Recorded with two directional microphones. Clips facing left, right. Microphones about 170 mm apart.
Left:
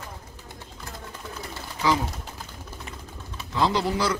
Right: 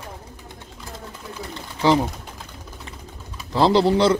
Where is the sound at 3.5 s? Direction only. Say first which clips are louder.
Right 7 dB; 30° right (ahead or behind).